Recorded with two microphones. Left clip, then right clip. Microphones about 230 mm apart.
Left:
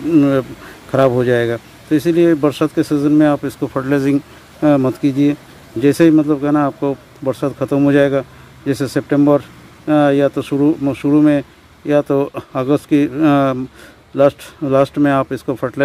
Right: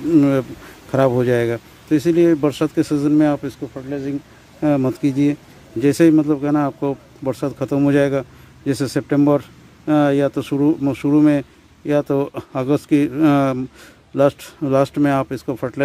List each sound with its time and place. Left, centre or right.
0.1 s speech: centre
3.6 s speech: left
4.6 s speech: centre